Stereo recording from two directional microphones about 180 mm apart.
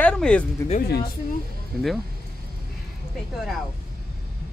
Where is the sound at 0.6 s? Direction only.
15° left (ahead or behind).